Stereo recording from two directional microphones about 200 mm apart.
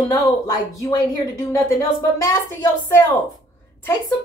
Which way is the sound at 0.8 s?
15° left (ahead or behind).